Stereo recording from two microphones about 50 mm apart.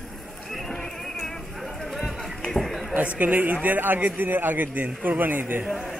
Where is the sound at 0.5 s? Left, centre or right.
Centre.